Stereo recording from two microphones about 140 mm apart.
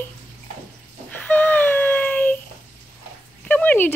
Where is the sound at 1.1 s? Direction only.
10° left (ahead or behind).